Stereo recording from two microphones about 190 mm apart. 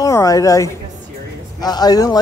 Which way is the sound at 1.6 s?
20° left (ahead or behind).